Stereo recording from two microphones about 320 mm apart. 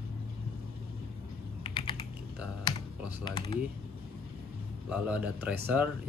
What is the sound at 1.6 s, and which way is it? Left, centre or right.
Typing, centre.